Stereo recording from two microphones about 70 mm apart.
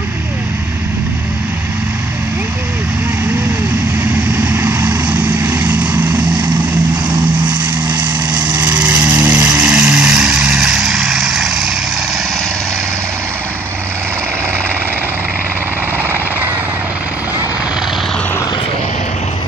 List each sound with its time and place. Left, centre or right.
5.4 s vehicle: right
9.0 s vehicle: right; by 11.7 s centre